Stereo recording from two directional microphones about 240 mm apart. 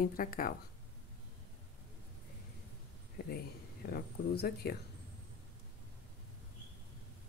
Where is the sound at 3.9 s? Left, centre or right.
Left.